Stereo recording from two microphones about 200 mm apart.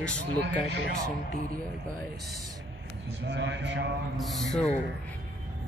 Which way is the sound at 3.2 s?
60° right (ahead or behind).